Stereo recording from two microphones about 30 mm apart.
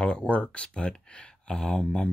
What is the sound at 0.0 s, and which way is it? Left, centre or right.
Speech, left.